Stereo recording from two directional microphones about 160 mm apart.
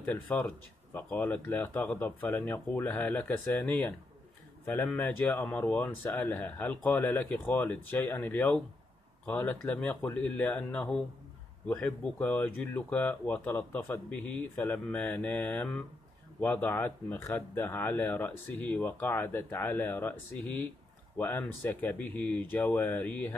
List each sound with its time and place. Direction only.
0.0 s speech: 10° left (ahead or behind)